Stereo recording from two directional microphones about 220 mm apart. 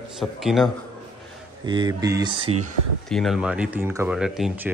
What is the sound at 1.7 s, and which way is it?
Speech, 20° right (ahead or behind).